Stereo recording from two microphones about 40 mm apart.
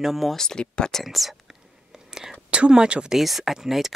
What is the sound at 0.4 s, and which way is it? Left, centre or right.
Speech, centre.